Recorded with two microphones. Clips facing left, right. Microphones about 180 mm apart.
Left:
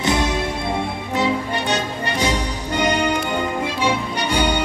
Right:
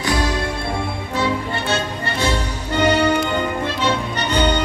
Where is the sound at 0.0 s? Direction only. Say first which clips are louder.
Left 1 dB; 20° left (ahead or behind).